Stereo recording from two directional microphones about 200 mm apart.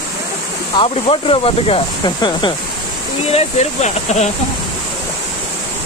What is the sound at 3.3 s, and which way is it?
Speech, 35° left (ahead or behind).